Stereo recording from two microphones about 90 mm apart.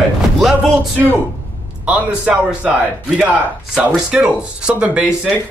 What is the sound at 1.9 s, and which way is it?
Speech, 15° right (ahead or behind).